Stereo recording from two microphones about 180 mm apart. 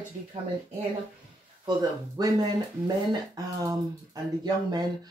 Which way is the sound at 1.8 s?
20° right (ahead or behind).